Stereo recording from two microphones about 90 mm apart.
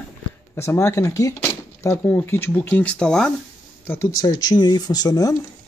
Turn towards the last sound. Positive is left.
turn(degrees=45)  # may be behind; listen again after turning